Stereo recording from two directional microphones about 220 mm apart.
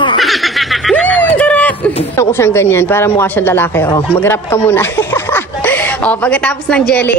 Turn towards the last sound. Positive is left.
turn(degrees=5)  # may be behind; listen again after turning